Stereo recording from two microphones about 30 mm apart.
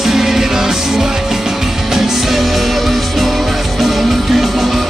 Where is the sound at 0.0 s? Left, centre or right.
Centre.